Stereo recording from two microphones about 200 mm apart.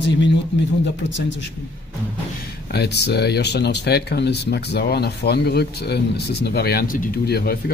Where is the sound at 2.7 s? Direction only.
55° left (ahead or behind).